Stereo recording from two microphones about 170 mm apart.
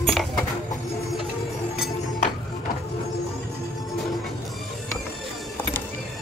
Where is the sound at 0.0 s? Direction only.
Centre (ahead or behind).